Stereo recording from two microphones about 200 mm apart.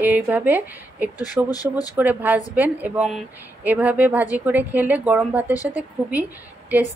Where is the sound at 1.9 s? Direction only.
10° right (ahead or behind).